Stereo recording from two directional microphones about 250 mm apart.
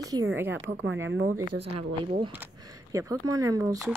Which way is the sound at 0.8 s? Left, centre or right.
Right.